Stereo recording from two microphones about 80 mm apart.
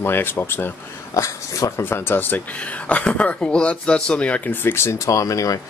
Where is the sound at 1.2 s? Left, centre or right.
Left.